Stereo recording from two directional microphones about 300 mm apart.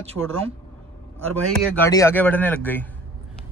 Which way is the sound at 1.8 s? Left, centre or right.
Centre.